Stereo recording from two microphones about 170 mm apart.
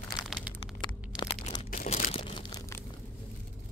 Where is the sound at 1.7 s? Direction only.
50° left (ahead or behind); by 2.7 s 20° left (ahead or behind).